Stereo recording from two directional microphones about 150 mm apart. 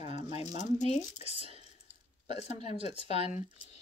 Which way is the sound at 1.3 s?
40° right (ahead or behind).